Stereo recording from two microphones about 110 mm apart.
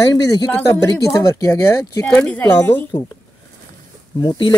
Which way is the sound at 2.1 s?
15° left (ahead or behind).